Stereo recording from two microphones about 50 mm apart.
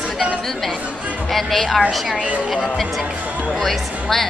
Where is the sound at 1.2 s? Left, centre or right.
Centre.